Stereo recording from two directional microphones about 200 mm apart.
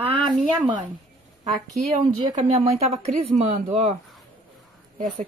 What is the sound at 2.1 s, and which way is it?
Speech, 30° right (ahead or behind).